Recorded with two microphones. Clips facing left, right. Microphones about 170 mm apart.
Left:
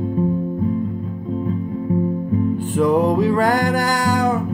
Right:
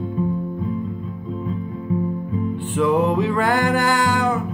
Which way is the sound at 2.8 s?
40° left (ahead or behind).